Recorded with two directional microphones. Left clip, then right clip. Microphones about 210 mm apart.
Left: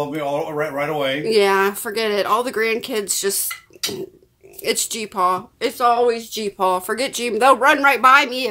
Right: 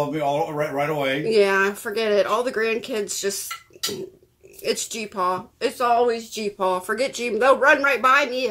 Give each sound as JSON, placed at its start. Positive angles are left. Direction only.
{"t": 0.1, "sound": "speech", "side_deg": -10}
{"t": 1.2, "sound": "speech", "side_deg": 30}
{"t": 4.6, "sound": "speech", "side_deg": 25}